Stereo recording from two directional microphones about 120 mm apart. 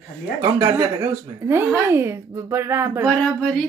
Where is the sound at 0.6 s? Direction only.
25° right (ahead or behind).